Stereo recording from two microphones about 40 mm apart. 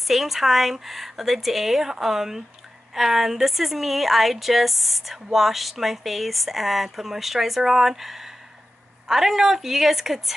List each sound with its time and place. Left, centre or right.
0.0 s a woman's voice: centre